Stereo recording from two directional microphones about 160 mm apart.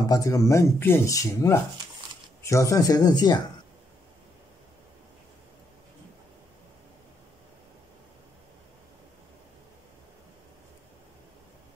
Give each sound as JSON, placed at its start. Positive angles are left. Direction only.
{"t": 0.1, "sound": "speech", "side_deg": 20}